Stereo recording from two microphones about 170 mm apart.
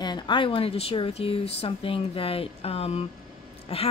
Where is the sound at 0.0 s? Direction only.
25° left (ahead or behind).